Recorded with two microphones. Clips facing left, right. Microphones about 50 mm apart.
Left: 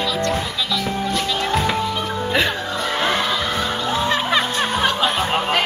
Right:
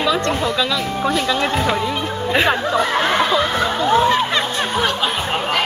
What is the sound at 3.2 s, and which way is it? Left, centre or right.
Music, right.